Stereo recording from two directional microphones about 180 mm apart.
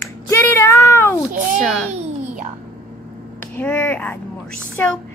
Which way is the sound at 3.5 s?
10° left (ahead or behind).